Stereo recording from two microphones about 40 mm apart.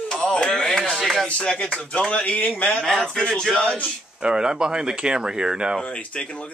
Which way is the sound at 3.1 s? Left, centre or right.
Centre.